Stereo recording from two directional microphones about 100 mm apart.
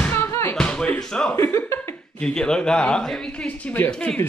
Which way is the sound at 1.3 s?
25° left (ahead or behind).